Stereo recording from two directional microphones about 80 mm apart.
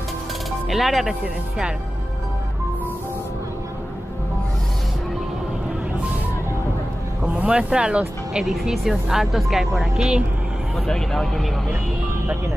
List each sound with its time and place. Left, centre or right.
0.7 s speech: centre
7.3 s speech: centre
10.9 s speech: centre